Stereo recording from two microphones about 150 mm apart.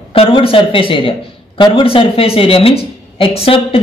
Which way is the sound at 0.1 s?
40° left (ahead or behind).